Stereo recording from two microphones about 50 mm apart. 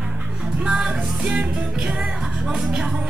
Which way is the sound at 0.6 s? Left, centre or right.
Centre.